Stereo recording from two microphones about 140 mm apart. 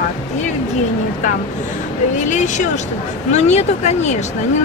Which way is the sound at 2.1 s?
60° left (ahead or behind).